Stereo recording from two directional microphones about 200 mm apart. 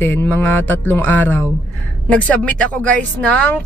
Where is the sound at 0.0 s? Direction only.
10° left (ahead or behind).